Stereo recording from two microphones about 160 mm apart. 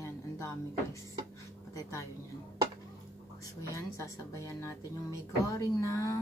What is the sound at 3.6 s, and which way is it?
Speech, 20° left (ahead or behind).